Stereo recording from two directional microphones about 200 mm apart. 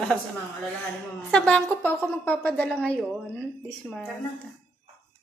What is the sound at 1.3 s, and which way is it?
A woman's voice, 5° left (ahead or behind).